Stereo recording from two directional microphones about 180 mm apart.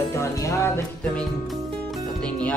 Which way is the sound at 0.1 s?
15° left (ahead or behind).